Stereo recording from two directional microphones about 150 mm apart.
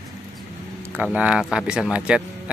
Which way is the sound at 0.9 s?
10° right (ahead or behind).